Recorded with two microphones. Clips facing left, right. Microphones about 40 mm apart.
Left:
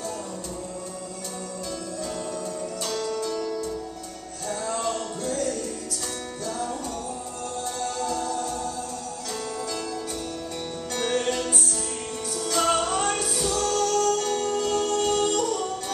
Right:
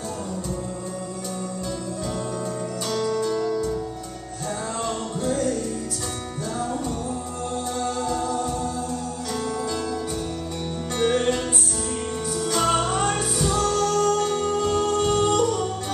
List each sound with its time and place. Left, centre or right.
2.9 s music: centre
4.8 s music: centre
7.8 s music: centre
11.0 s music: centre